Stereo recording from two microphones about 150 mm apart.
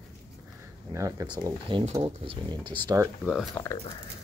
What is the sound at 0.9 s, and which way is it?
Speech, 20° right (ahead or behind).